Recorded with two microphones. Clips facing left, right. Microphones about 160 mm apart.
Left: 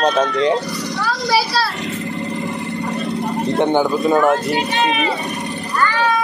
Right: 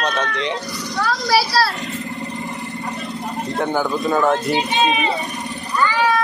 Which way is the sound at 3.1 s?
20° left (ahead or behind).